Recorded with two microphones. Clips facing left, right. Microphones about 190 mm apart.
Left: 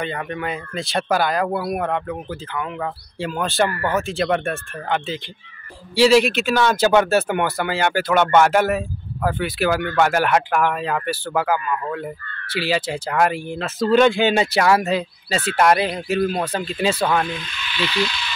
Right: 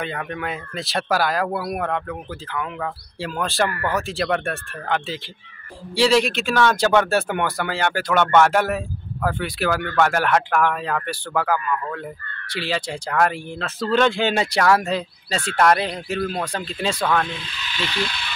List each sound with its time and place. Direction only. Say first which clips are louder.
0.0 s speech: left 2 dB; centre (ahead or behind)
17.4 s speech: left 3 dB; 35° right (ahead or behind); by 18.3 s 55° right (ahead or behind)